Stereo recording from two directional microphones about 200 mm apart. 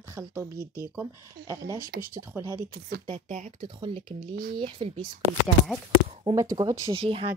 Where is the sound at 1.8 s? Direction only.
45° right (ahead or behind).